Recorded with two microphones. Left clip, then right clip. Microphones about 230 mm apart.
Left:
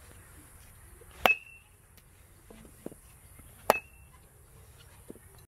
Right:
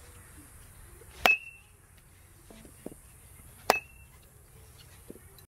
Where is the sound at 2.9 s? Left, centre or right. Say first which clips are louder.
Even; left.